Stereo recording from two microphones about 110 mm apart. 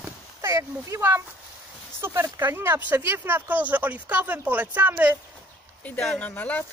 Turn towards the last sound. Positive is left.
turn(degrees=15)  # may be behind; listen again after turning